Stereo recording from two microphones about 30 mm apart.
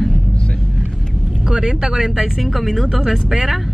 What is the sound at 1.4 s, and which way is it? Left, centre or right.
Speech, right.